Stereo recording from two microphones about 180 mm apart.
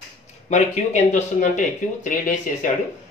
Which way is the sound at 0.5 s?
40° left (ahead or behind).